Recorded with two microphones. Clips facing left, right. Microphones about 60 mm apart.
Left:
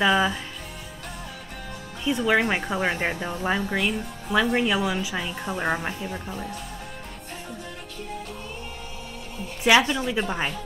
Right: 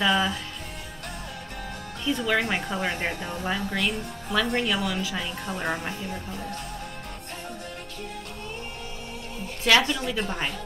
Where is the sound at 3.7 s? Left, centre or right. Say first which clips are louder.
Left 2 dB; centre.